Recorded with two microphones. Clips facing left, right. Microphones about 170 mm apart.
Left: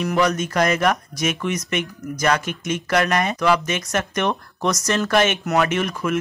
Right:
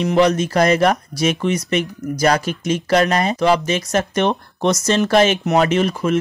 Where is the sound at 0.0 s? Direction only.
25° right (ahead or behind).